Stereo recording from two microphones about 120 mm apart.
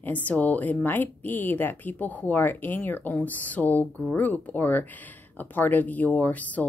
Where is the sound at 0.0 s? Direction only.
15° left (ahead or behind).